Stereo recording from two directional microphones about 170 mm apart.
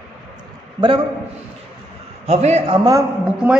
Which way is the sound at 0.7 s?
30° right (ahead or behind).